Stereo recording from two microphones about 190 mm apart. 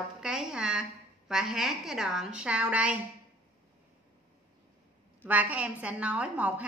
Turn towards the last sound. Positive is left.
turn(degrees=-10)  # may be behind; listen again after turning